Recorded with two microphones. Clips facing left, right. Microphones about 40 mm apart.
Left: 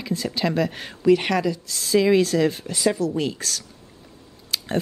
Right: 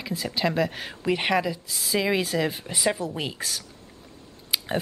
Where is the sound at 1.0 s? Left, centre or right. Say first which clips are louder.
Left 5 dB; centre.